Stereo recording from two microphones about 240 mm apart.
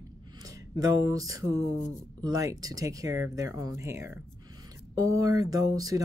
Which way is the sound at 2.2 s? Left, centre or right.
Centre.